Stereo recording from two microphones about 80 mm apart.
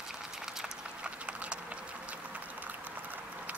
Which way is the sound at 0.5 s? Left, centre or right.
Centre.